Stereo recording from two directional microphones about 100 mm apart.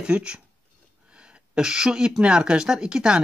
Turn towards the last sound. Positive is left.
turn(degrees=-10)  # may be behind; listen again after turning